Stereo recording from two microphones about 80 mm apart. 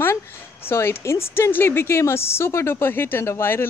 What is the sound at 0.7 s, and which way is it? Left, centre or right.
A woman's voice, left.